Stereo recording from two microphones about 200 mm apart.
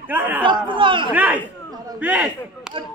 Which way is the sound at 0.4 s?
25° right (ahead or behind).